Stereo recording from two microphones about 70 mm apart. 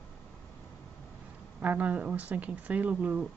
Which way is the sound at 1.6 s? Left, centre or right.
Right.